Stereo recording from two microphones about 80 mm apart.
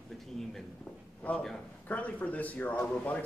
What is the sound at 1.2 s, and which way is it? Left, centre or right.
Speech, centre.